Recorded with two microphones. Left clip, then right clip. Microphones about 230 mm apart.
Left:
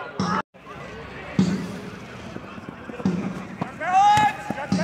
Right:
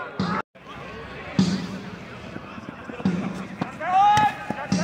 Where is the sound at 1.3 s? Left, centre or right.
Right.